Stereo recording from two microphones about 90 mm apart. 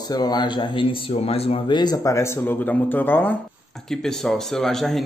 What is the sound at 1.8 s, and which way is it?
Speech, 45° left (ahead or behind).